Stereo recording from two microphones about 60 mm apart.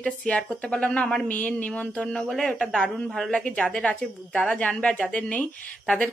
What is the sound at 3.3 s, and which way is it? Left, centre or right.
A woman's voice, centre.